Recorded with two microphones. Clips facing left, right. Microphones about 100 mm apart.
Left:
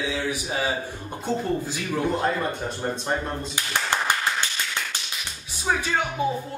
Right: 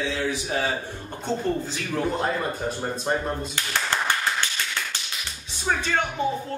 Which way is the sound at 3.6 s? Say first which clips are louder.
Even; 15° left (ahead or behind).